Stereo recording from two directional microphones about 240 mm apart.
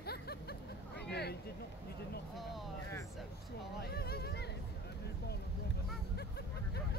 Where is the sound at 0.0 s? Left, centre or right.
Left.